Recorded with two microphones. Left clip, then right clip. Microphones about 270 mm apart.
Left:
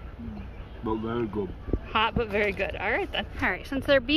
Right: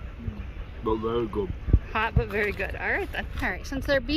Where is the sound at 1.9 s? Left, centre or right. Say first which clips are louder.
Left 2 dB; centre.